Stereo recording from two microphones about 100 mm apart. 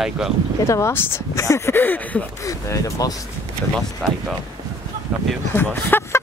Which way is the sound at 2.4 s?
35° left (ahead or behind).